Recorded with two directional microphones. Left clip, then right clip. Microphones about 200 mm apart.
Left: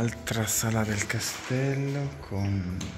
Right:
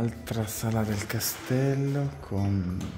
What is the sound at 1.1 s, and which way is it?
Speech, 25° right (ahead or behind).